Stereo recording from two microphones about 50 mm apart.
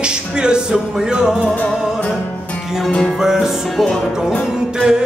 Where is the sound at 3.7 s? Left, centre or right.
Centre.